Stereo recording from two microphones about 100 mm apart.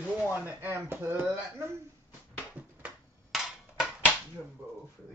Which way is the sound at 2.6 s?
15° right (ahead or behind).